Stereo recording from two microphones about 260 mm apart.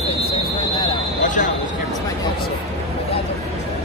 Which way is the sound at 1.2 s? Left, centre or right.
Left.